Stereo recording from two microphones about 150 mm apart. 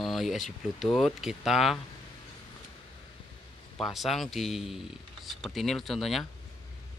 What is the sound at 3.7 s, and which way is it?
Speech, centre (ahead or behind).